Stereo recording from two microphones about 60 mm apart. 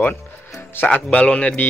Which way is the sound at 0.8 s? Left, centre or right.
Left.